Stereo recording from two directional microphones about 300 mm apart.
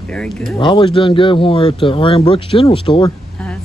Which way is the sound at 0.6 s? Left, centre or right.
Centre.